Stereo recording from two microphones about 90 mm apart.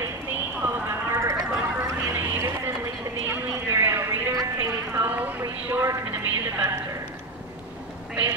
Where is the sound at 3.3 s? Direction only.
25° right (ahead or behind).